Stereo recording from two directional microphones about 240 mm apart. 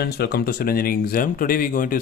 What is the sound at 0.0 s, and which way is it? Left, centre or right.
Speech, left.